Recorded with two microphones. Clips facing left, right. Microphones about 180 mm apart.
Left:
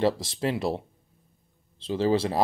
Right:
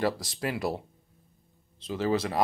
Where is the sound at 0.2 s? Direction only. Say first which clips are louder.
Left 3 dB; 25° left (ahead or behind).